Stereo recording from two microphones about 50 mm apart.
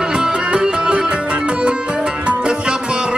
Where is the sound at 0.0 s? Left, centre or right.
Centre.